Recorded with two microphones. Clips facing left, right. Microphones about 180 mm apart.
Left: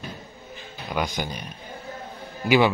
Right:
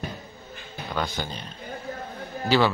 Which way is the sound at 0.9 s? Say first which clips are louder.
Left 2 dB; 15° left (ahead or behind).